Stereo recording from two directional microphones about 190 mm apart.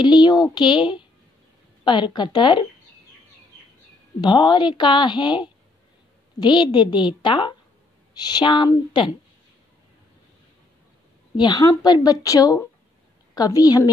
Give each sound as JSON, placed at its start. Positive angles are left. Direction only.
{"t": 0.0, "sound": "speech", "side_deg": 25}
{"t": 4.2, "sound": "speech", "side_deg": 25}
{"t": 11.3, "sound": "speech", "side_deg": 20}